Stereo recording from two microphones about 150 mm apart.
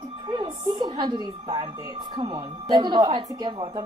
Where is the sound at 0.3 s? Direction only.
30° right (ahead or behind).